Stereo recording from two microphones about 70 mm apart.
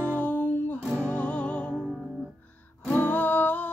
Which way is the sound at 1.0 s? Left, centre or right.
Centre.